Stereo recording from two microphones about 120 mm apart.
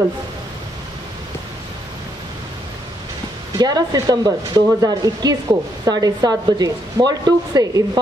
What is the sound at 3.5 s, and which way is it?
Speech, 35° right (ahead or behind).